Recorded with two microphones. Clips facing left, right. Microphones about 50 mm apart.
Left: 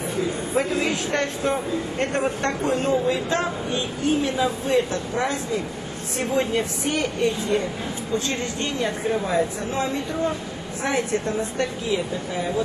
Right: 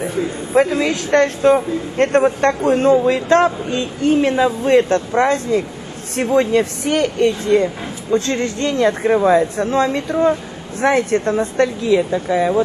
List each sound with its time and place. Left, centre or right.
0.6 s speech: right
2.6 s speech: right